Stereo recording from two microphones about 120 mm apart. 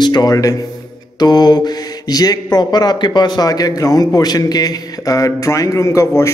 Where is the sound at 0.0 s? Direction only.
35° left (ahead or behind).